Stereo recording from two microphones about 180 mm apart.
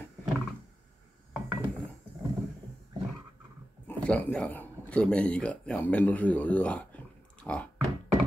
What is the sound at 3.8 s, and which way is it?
Speech, 5° left (ahead or behind).